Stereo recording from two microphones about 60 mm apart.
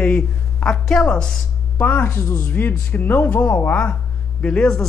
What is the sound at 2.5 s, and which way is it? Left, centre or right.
Speech, left.